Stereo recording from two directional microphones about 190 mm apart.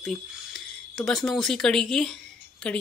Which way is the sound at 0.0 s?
Centre (ahead or behind).